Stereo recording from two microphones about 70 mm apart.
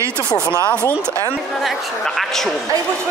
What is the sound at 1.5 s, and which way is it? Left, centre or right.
Speech, centre.